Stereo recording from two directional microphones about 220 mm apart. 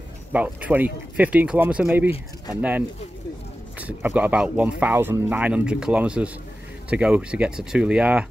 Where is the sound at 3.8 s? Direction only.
5° right (ahead or behind).